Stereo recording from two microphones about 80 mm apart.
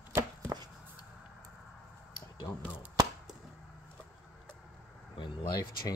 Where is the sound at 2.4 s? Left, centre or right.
Left.